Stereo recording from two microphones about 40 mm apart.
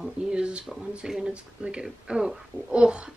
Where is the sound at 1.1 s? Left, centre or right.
Centre.